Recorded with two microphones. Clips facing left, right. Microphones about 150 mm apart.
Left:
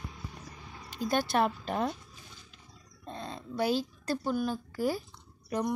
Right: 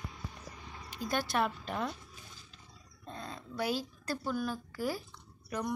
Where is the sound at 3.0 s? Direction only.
25° left (ahead or behind).